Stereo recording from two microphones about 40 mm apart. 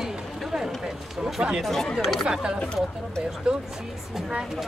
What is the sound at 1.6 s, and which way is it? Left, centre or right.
Speech, centre.